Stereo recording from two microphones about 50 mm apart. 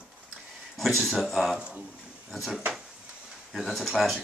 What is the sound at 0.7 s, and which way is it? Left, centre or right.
Speech, centre.